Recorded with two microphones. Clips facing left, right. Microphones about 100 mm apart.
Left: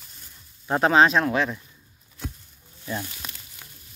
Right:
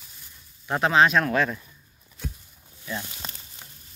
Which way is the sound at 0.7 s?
35° left (ahead or behind).